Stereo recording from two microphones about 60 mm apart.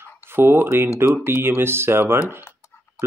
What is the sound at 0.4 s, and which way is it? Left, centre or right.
Speech, right.